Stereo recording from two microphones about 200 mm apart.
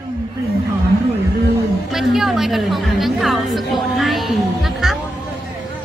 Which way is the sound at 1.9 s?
Centre (ahead or behind).